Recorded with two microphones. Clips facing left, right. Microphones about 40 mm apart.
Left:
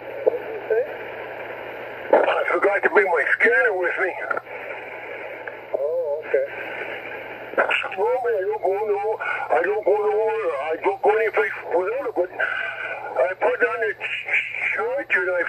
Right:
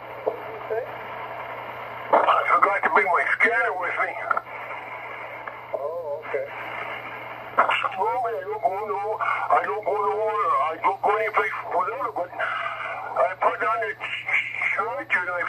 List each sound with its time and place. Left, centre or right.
0.2 s radio: centre
2.0 s speech: centre
7.5 s a sound: centre
8.6 s speech: centre